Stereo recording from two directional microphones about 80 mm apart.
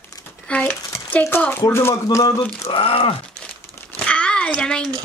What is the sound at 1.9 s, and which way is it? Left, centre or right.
Speech, left.